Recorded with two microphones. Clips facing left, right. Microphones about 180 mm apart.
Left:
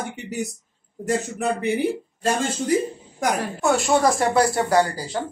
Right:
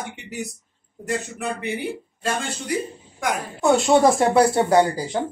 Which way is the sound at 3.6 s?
20° right (ahead or behind).